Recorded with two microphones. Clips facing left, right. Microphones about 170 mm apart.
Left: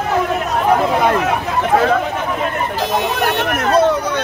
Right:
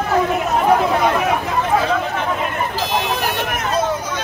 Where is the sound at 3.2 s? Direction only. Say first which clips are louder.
Left 5 dB; 60° left (ahead or behind).